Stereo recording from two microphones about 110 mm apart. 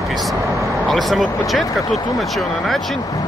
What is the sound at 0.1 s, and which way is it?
Vehicle, centre (ahead or behind).